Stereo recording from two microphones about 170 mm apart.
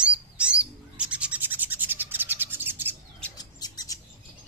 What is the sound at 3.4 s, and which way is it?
Bird, 25° left (ahead or behind).